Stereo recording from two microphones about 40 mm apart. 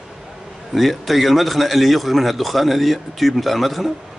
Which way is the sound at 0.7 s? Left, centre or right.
Centre.